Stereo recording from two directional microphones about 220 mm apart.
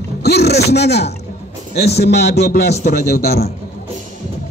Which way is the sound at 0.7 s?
50° left (ahead or behind).